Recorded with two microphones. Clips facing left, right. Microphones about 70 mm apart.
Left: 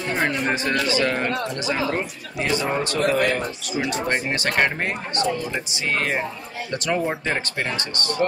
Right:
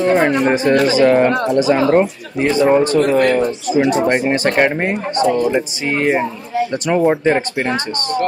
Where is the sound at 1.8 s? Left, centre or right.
Right; by 7.7 s centre.